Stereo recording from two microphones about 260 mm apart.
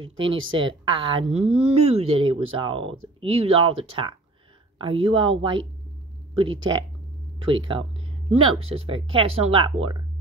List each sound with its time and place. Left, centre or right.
0.5 s speech: centre